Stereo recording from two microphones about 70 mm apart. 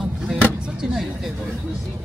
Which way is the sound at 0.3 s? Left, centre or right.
Centre.